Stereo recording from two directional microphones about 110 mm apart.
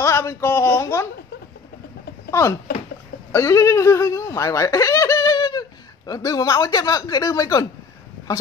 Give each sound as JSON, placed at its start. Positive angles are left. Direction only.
{"t": 0.0, "sound": "speech", "side_deg": 25}
{"t": 3.3, "sound": "speech", "side_deg": 25}